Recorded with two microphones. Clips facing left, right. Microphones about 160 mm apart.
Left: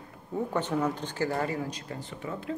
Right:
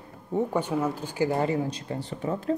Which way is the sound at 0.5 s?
10° right (ahead or behind).